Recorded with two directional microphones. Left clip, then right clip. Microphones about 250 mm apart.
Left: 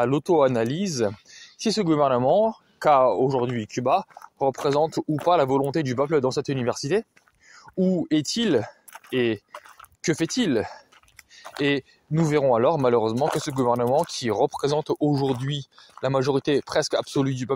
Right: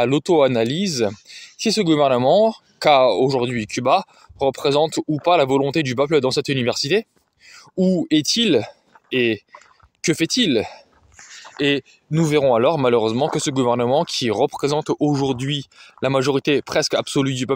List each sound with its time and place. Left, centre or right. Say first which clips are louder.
0.0 s speech: right 4 dB; right
10.0 s speech: right 5 dB; right
12.1 s speech: right 4 dB; right